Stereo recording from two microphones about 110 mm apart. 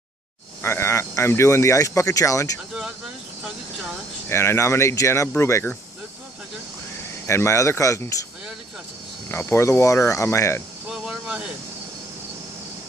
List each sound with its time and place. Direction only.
0.6 s speech: 25° left (ahead or behind)
4.3 s speech: 25° left (ahead or behind)
7.2 s speech: 25° left (ahead or behind)
9.3 s speech: 25° left (ahead or behind)
10.9 s a sound: 5° right (ahead or behind)